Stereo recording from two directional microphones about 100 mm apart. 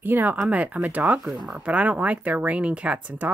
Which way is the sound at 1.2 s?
Centre (ahead or behind).